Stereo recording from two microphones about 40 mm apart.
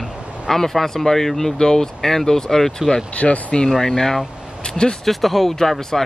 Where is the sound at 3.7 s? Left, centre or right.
Centre.